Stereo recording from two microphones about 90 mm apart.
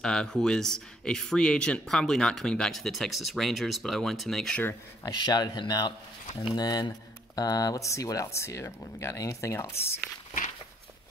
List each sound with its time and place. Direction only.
0.0 s speech: 5° left (ahead or behind)
5.0 s speech: 50° left (ahead or behind); by 9.9 s 30° left (ahead or behind)